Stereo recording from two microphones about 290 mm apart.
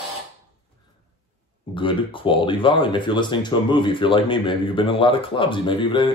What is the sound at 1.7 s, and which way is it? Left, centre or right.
Speech, centre.